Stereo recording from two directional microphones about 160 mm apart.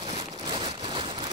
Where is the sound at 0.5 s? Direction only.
30° right (ahead or behind).